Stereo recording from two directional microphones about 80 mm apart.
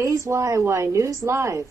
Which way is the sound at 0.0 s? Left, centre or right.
Right.